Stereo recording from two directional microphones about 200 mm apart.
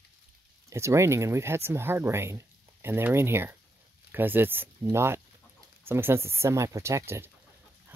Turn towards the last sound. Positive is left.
turn(degrees=-15)  # may be behind; listen again after turning